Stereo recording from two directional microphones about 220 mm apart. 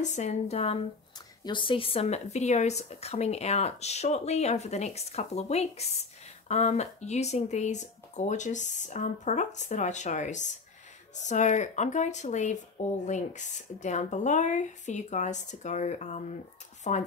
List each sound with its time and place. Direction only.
0.0 s speech: 30° left (ahead or behind)